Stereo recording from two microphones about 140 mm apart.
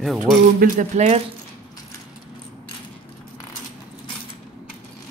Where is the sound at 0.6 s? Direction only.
60° right (ahead or behind).